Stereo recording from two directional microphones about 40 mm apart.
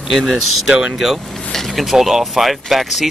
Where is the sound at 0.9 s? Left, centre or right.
Centre.